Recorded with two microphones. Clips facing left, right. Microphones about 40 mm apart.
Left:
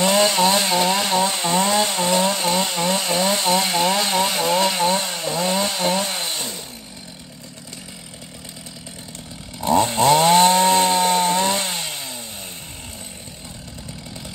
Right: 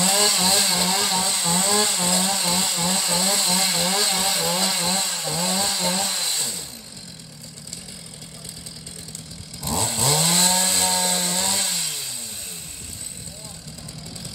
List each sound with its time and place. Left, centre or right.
0.0 s chainsaw: left
9.6 s chainsaw: left